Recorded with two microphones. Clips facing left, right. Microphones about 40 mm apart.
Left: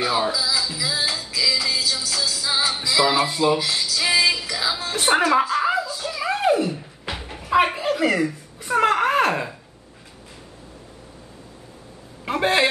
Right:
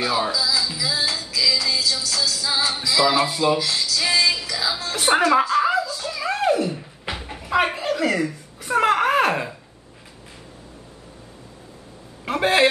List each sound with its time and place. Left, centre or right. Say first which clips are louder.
0.0 s speech: even; centre
0.7 s music: even; centre
2.9 s speech: right 1 dB; centre
3.4 s music: even; centre
6.7 s a sound: even; centre
12.3 s a man's voice: right 1 dB; centre